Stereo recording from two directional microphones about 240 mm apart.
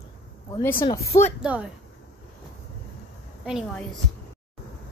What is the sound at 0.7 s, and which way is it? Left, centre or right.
Speech, centre.